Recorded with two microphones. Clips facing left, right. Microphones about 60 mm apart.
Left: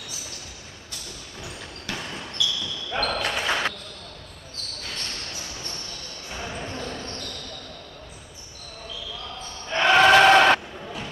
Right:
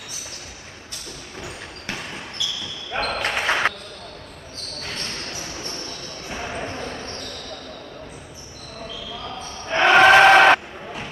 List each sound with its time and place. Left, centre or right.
2.0 s basketball bounce: right
4.8 s a sound: right
6.2 s basketball bounce: right
9.2 s basketball bounce: right